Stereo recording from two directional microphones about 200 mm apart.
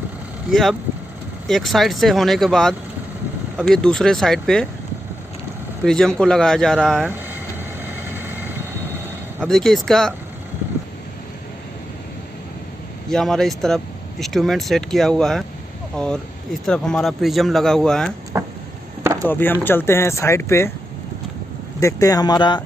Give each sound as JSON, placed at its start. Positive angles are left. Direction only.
{"t": 0.5, "sound": "speech", "side_deg": 0}
{"t": 5.9, "sound": "speech", "side_deg": 5}
{"t": 8.1, "sound": "vehicle", "side_deg": -10}
{"t": 9.4, "sound": "speech", "side_deg": 0}
{"t": 13.1, "sound": "speech", "side_deg": 0}
{"t": 18.3, "sound": "a sound", "side_deg": -10}
{"t": 19.2, "sound": "speech", "side_deg": 10}
{"t": 21.7, "sound": "speech", "side_deg": 15}